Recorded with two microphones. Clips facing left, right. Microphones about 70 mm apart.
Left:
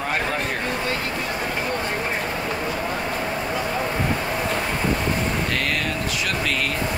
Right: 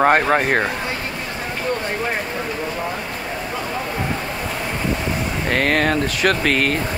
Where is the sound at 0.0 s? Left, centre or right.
Right.